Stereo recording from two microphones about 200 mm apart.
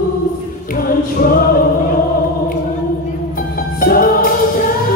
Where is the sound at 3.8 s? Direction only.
45° left (ahead or behind).